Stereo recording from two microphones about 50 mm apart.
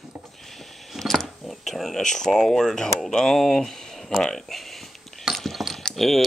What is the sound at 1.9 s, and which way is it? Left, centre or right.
Speech, centre.